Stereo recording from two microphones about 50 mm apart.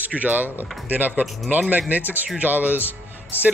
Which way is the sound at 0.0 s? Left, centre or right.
Right.